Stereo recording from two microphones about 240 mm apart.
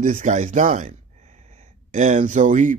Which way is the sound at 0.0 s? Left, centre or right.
Right.